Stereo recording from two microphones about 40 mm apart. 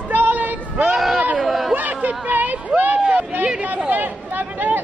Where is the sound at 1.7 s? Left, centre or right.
Right.